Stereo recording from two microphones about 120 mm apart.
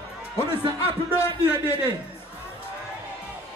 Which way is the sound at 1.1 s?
20° left (ahead or behind).